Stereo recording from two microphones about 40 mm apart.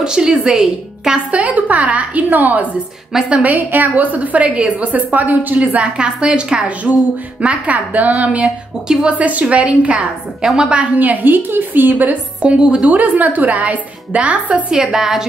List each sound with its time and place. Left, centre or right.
0.0 s a woman's voice: centre
1.3 s a woman's voice: right
3.1 s a woman's voice: centre
3.4 s a woman's voice: right
5.8 s a woman's voice: right
7.4 s a woman's voice: right
8.9 s a woman's voice: centre
9.2 s a woman's voice: right
10.4 s a woman's voice: centre
11.0 s a woman's voice: right
11.3 s a woman's voice: right
12.5 s a woman's voice: centre
12.8 s a woman's voice: right
14.7 s a woman's voice: centre